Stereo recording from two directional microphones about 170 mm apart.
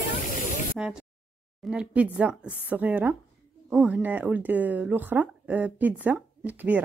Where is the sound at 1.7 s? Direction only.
5° right (ahead or behind).